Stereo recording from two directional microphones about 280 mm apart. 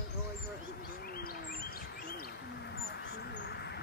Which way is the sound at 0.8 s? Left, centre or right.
Left.